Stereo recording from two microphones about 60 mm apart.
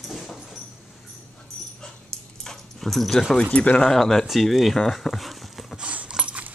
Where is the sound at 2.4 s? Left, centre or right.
Centre.